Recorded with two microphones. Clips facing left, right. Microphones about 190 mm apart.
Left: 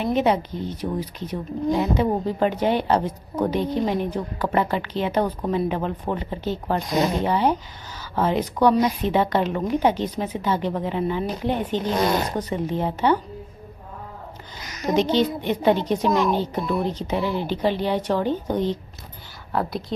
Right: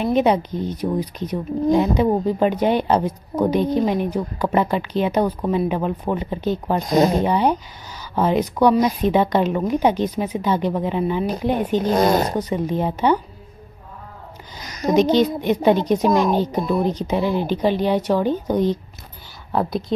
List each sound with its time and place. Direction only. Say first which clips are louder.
0.0 s speech: right 3 dB; 15° right (ahead or behind)
6.9 s speech: right 6 dB; 35° right (ahead or behind)
7.2 s speech: right 2 dB; 15° right (ahead or behind)
11.8 s speech: right 6 dB; 45° right (ahead or behind)
12.4 s speech: right 3 dB; 10° right (ahead or behind)
15.1 s speech: right 4 dB; 15° right (ahead or behind)